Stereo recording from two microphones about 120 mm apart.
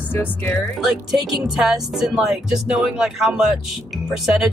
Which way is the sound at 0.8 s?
Centre (ahead or behind).